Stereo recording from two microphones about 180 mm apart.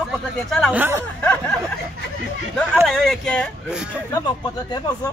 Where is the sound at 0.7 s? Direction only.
15° right (ahead or behind).